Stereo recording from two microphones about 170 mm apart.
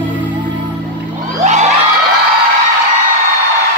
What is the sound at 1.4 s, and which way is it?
Music, 45° right (ahead or behind).